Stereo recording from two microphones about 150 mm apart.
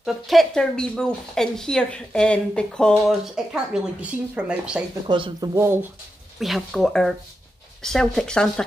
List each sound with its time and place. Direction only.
0.0 s speech: centre (ahead or behind)
5.0 s speech: 30° right (ahead or behind); by 5.9 s 15° right (ahead or behind)
6.4 s speech: centre (ahead or behind)